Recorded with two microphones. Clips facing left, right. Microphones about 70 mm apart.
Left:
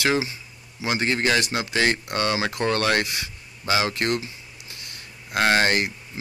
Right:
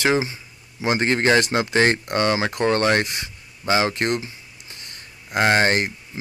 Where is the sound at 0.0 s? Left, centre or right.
Right.